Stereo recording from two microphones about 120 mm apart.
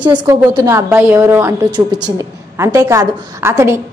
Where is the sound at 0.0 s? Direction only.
40° right (ahead or behind).